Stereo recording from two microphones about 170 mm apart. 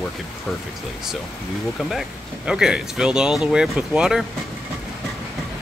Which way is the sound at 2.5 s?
5° right (ahead or behind).